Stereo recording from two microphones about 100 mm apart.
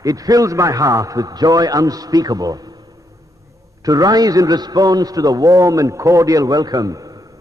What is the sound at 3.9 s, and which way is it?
A man's voice, 40° right (ahead or behind).